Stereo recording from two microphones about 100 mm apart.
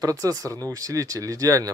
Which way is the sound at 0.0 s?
35° right (ahead or behind).